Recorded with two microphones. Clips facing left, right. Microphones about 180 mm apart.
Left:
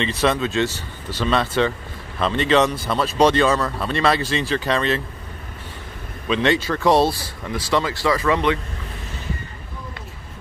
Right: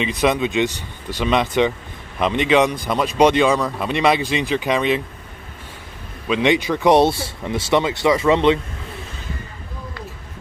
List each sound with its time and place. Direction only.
0.0 s speech: 15° right (ahead or behind)
6.2 s speech: 10° right (ahead or behind)